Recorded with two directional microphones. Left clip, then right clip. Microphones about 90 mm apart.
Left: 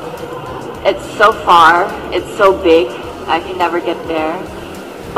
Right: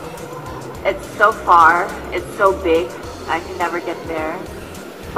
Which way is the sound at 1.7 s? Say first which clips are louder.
Left 5 dB; 40° left (ahead or behind).